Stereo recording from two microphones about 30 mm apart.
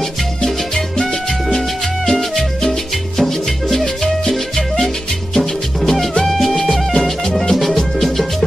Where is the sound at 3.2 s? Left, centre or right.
Centre.